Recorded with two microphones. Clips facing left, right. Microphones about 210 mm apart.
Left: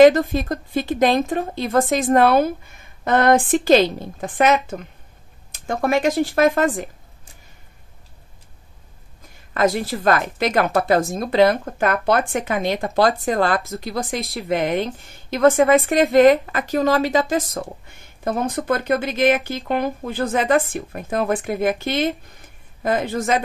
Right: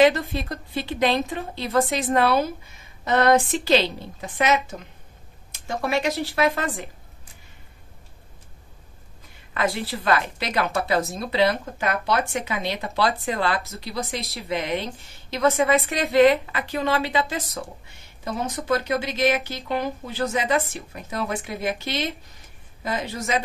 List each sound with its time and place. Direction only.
0.0 s speech: 45° left (ahead or behind)
9.5 s speech: 45° left (ahead or behind)